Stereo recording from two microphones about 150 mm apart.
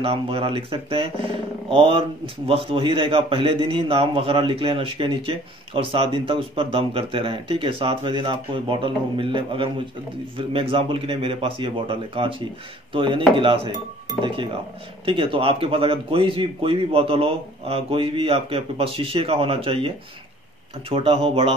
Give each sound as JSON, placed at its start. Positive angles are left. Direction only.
{"t": 0.0, "sound": "speech", "side_deg": -40}
{"t": 15.0, "sound": "speech", "side_deg": -35}
{"t": 20.9, "sound": "speech", "side_deg": -40}